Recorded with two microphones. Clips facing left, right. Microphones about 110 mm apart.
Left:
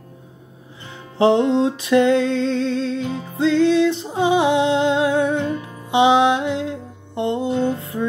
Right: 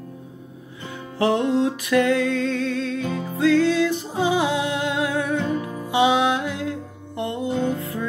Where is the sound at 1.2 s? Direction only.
25° left (ahead or behind).